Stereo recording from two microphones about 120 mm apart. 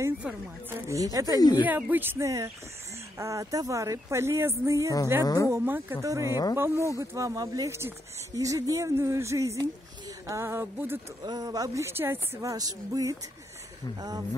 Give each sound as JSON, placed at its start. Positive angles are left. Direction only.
{"t": 0.2, "sound": "a woman's voice", "side_deg": -15}
{"t": 1.6, "sound": "a woman's voice", "side_deg": -15}
{"t": 5.2, "sound": "a woman's voice", "side_deg": 30}
{"t": 5.5, "sound": "a woman's voice", "side_deg": -20}
{"t": 11.2, "sound": "a woman's voice", "side_deg": -30}